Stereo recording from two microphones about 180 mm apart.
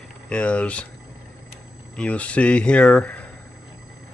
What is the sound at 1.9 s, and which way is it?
Speech, 5° left (ahead or behind).